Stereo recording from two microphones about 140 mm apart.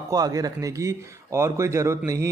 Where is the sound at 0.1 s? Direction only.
25° right (ahead or behind).